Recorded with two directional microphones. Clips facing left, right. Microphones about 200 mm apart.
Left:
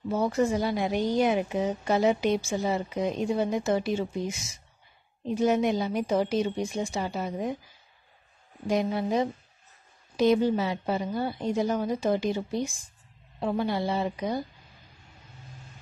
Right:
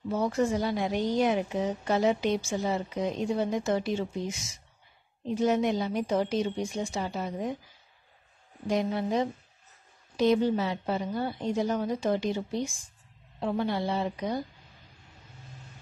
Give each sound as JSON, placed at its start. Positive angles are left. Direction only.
{"t": 0.1, "sound": "a woman's voice", "side_deg": 10}
{"t": 8.6, "sound": "a woman's voice", "side_deg": 10}